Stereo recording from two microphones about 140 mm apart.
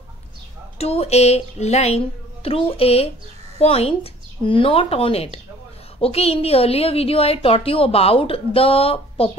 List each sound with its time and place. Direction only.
0.7 s a woman's voice: 45° left (ahead or behind)